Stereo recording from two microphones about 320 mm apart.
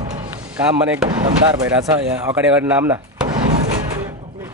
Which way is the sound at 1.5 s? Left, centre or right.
Centre.